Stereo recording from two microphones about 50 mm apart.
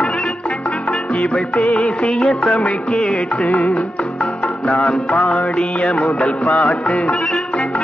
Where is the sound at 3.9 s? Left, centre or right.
Centre.